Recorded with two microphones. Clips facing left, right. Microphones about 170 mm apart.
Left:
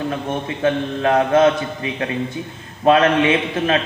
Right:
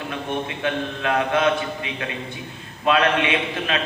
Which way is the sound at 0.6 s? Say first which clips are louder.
Left 6 dB; 35° left (ahead or behind).